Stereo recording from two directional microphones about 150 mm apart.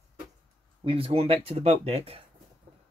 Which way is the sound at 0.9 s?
40° right (ahead or behind).